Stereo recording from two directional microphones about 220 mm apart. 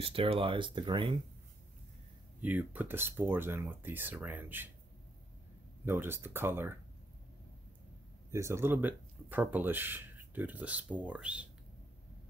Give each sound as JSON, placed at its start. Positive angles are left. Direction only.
{"t": 0.0, "sound": "speech", "side_deg": -25}
{"t": 2.4, "sound": "speech", "side_deg": -10}
{"t": 5.9, "sound": "speech", "side_deg": -10}
{"t": 8.3, "sound": "speech", "side_deg": -10}